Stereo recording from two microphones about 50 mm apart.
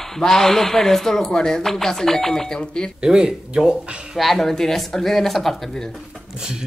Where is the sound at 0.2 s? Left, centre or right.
Centre.